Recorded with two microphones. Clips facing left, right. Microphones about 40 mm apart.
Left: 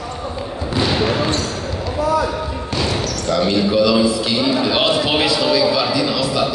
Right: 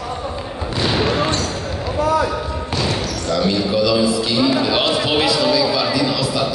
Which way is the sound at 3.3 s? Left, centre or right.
Left.